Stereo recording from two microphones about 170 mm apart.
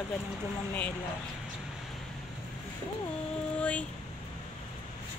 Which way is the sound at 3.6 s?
5° left (ahead or behind).